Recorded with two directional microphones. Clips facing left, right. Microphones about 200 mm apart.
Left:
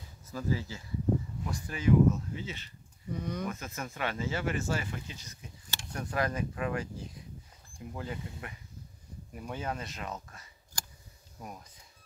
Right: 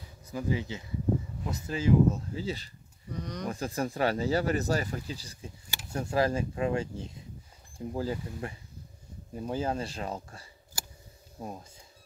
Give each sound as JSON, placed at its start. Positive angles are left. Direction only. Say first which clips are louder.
{"t": 0.2, "sound": "speech", "louder": "right 2 dB", "side_deg": -15}
{"t": 3.2, "sound": "speech", "louder": "left 1 dB", "side_deg": 5}
{"t": 3.4, "sound": "speech", "louder": "right 6 dB", "side_deg": -35}
{"t": 5.7, "sound": "a sound", "louder": "even", "side_deg": -10}
{"t": 5.9, "sound": "speech", "louder": "right 5 dB", "side_deg": -30}